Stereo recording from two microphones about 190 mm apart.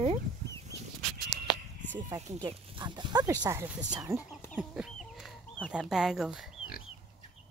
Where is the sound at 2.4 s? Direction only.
25° right (ahead or behind).